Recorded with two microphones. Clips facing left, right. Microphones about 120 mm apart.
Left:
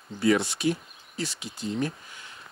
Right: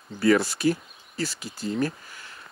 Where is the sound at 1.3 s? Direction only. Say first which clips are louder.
Right 2 dB; centre (ahead or behind).